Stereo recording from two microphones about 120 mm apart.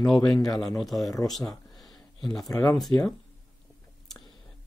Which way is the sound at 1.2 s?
Centre (ahead or behind).